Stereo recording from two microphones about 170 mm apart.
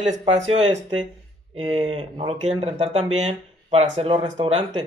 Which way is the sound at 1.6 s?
35° right (ahead or behind).